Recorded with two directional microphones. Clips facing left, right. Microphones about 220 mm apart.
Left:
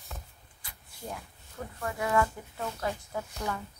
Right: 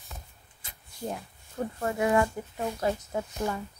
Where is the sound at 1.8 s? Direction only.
25° right (ahead or behind).